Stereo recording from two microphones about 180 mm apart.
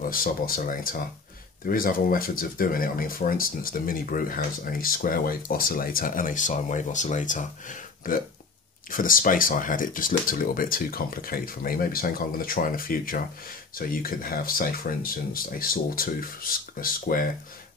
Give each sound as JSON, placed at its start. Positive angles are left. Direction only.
{"t": 0.1, "sound": "speech", "side_deg": 50}